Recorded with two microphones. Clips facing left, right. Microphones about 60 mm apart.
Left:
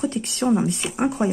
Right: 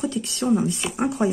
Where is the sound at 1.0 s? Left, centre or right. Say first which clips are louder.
Left 2 dB; left.